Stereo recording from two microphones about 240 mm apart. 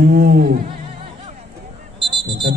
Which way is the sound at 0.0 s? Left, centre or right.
Right.